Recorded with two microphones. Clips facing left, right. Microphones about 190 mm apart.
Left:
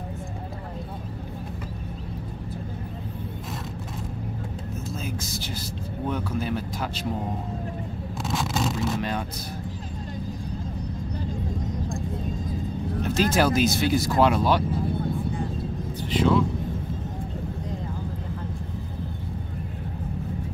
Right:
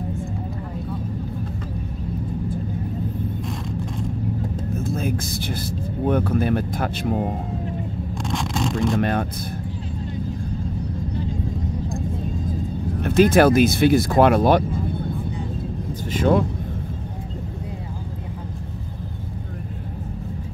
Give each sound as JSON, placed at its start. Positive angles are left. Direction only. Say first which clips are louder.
{"t": 4.8, "sound": "vehicle", "louder": "right 9 dB", "side_deg": -55}
{"t": 6.0, "sound": "speech", "louder": "right 8 dB", "side_deg": -55}
{"t": 8.3, "sound": "a sound", "louder": "right 2 dB", "side_deg": 5}
{"t": 8.9, "sound": "speech", "louder": "right 7 dB", "side_deg": -55}
{"t": 13.0, "sound": "speech", "louder": "right 8 dB", "side_deg": -55}
{"t": 16.1, "sound": "speech", "louder": "right 2 dB", "side_deg": -50}